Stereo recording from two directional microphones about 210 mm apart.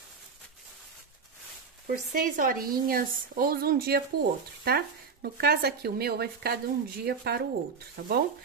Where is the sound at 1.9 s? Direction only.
40° right (ahead or behind).